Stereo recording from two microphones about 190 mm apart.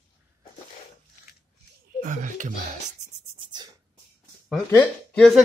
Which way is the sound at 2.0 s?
45° right (ahead or behind).